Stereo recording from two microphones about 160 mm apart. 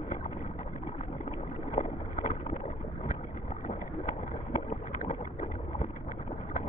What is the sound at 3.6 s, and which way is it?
Boat, 50° left (ahead or behind).